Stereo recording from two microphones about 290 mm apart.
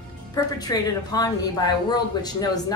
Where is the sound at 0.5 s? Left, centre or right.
Centre.